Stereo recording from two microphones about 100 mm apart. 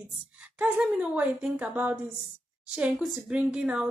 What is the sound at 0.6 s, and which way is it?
A woman's voice, 15° right (ahead or behind).